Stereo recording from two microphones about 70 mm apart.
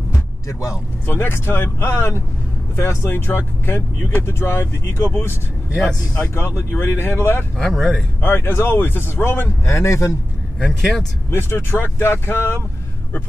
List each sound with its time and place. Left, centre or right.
0.5 s a man's voice: left
1.0 s speech: left
5.8 s speech: centre
6.3 s speech: left
7.5 s speech: centre
8.2 s a man's voice: left
10.7 s speech: centre
11.2 s speech: left